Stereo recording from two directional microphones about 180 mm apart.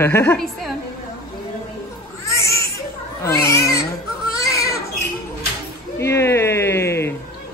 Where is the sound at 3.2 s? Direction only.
15° left (ahead or behind).